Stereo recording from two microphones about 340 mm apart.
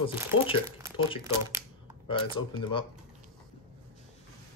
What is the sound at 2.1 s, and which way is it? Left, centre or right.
Speech, centre.